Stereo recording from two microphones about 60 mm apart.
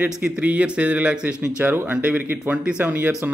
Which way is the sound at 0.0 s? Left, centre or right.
Right.